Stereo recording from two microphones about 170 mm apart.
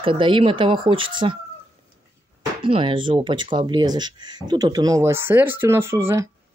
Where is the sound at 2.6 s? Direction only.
30° right (ahead or behind).